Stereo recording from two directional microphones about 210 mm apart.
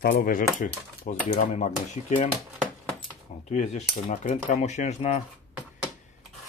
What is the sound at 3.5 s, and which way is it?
Speech, 35° left (ahead or behind).